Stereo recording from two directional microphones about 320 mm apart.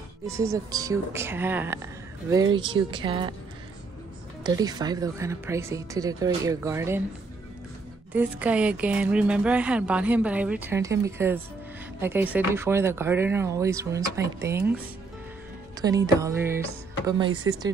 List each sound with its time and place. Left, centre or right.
0.3 s speech: centre
4.4 s speech: centre
8.1 s speech: centre
15.8 s speech: centre
17.3 s speech: right